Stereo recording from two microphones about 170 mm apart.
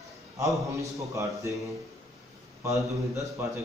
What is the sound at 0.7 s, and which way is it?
Speech, 15° right (ahead or behind).